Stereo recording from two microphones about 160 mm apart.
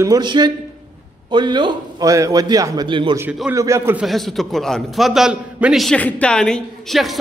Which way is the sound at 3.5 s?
20° right (ahead or behind).